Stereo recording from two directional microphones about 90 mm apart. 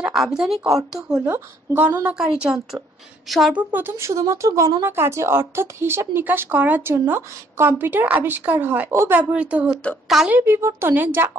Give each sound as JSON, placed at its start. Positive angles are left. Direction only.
{"t": 0.0, "sound": "speech", "side_deg": -5}
{"t": 1.2, "sound": "speech", "side_deg": -25}
{"t": 2.0, "sound": "a woman's voice", "side_deg": -10}
{"t": 3.5, "sound": "speech", "side_deg": -20}
{"t": 9.3, "sound": "a woman's voice", "side_deg": -15}
{"t": 10.0, "sound": "a woman's voice", "side_deg": -5}
{"t": 10.3, "sound": "speech", "side_deg": -30}